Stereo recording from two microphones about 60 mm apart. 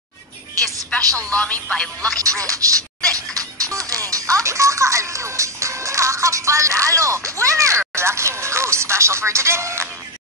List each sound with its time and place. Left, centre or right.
1.1 s speech: centre
2.1 s speech: right
3.2 s music: right
7.9 s speech: right